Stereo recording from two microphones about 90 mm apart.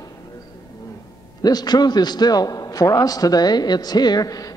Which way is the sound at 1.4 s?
45° left (ahead or behind).